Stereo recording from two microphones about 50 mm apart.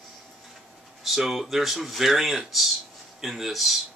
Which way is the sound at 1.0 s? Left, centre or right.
Centre.